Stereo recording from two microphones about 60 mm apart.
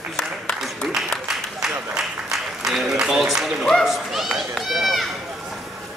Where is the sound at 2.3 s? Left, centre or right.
Centre.